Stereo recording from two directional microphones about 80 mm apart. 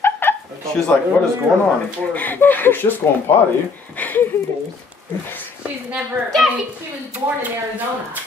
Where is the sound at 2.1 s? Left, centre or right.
Left.